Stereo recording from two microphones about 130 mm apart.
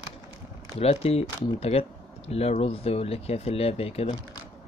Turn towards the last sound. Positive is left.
turn(degrees=50)  # may be behind; listen again after turning